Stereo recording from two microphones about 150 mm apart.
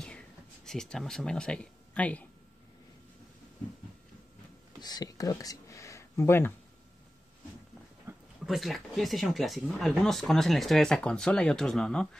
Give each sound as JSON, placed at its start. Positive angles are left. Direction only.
{"t": 0.7, "sound": "speech", "side_deg": 5}
{"t": 4.7, "sound": "speech", "side_deg": 25}
{"t": 8.1, "sound": "a sound", "side_deg": -15}
{"t": 8.5, "sound": "speech", "side_deg": 0}